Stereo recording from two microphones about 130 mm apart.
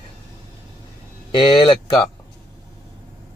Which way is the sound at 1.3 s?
40° left (ahead or behind).